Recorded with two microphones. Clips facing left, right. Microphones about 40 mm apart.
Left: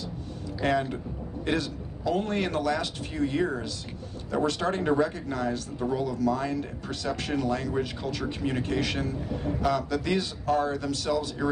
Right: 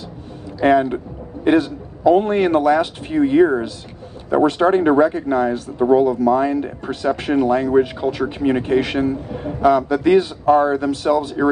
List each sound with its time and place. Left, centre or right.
0.6 s a man's voice: right